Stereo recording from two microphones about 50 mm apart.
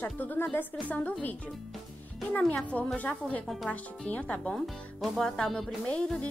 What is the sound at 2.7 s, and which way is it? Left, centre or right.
A woman's voice, left.